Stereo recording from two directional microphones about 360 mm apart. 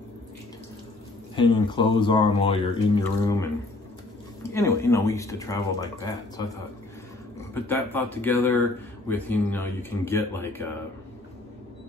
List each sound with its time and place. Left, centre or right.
1.3 s speech: centre
7.5 s speech: centre